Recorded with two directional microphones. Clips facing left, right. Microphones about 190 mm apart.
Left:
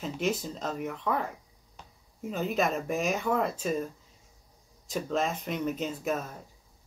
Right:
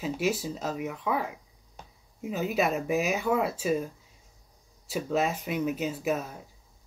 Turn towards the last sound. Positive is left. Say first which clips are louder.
# right 2 dB
turn(degrees=-5)  # may be behind; listen again after turning